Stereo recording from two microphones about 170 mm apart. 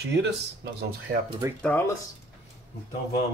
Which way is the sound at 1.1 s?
50° right (ahead or behind).